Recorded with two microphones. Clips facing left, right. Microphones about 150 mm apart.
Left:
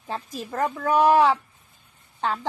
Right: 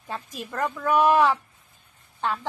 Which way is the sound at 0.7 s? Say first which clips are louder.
Even; 30° left (ahead or behind).